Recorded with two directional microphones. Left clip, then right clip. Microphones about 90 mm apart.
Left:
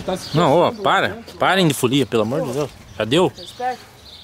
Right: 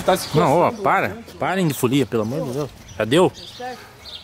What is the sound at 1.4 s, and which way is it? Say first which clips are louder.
Speech: left 6 dB; 20° left (ahead or behind).